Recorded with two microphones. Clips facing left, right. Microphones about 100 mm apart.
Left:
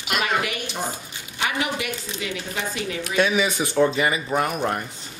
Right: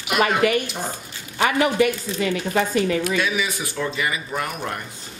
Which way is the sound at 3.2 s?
25° left (ahead or behind).